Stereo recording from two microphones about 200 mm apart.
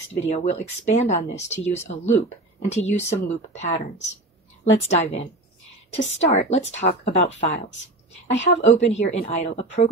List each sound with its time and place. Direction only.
0.4 s speech: 35° left (ahead or behind)
4.7 s speech: 35° left (ahead or behind)